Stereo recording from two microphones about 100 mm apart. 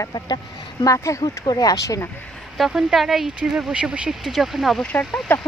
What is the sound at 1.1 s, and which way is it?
Speech, 30° left (ahead or behind).